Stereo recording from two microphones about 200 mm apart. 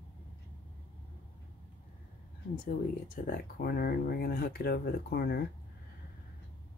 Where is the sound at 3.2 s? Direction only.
45° left (ahead or behind).